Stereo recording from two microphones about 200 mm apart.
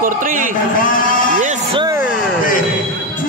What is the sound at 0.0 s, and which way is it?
Speech, 40° right (ahead or behind).